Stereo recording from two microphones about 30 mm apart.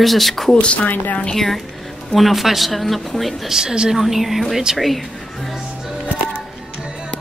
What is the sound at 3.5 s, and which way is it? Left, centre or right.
Speech, right.